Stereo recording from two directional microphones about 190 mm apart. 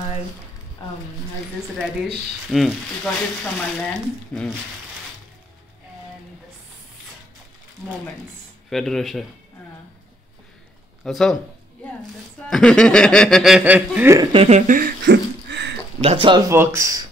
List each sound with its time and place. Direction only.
2.5 s speech: centre (ahead or behind)
8.6 s speech: centre (ahead or behind)
11.1 s speech: centre (ahead or behind)
12.4 s speech: 5° left (ahead or behind)
14.3 s speech: 30° right (ahead or behind)
14.7 s a sound: 55° right (ahead or behind)
16.0 s speech: 30° right (ahead or behind)
16.4 s speech: 15° right (ahead or behind)